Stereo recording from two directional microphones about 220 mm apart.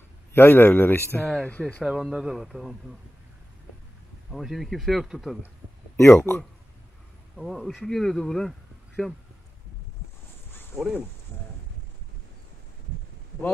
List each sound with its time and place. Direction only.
0.3 s speech: 10° left (ahead or behind)
4.3 s speech: centre (ahead or behind)
5.9 s speech: 10° left (ahead or behind)
7.3 s speech: centre (ahead or behind)
10.8 s speech: centre (ahead or behind)